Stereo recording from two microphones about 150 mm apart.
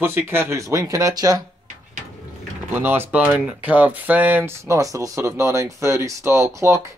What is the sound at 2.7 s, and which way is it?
Speech, 15° right (ahead or behind).